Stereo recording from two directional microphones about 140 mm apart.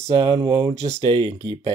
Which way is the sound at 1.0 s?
35° right (ahead or behind).